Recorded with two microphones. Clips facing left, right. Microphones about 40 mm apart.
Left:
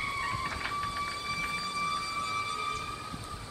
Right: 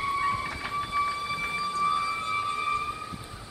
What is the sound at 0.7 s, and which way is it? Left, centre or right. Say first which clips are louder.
Siren: right 6 dB; centre.